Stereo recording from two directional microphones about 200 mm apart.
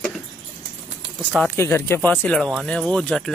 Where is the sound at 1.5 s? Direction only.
10° left (ahead or behind).